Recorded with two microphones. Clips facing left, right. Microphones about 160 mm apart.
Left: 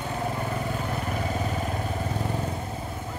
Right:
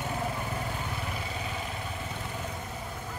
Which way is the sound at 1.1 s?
45° left (ahead or behind).